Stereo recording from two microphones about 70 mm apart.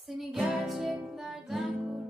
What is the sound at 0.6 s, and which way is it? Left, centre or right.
Music, centre.